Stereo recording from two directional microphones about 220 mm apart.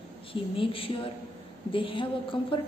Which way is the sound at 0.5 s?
25° left (ahead or behind).